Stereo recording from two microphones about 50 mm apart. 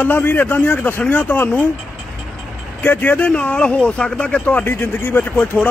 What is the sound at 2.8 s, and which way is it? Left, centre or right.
Speech, left.